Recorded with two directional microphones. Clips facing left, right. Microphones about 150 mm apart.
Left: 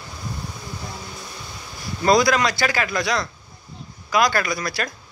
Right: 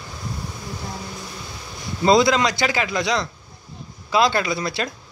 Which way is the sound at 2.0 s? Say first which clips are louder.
Right 1 dB; 25° right (ahead or behind).